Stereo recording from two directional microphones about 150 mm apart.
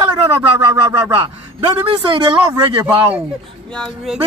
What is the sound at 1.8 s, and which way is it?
Music, 35° right (ahead or behind).